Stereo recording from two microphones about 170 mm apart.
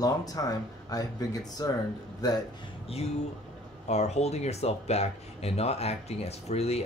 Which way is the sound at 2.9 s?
35° left (ahead or behind).